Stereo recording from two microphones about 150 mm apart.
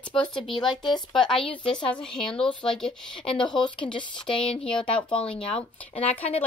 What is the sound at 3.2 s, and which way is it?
Speech, 35° left (ahead or behind).